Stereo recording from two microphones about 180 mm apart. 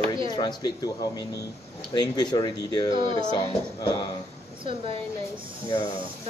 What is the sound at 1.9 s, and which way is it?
Speech, 25° left (ahead or behind).